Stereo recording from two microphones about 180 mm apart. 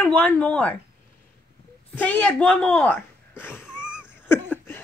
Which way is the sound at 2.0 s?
10° left (ahead or behind).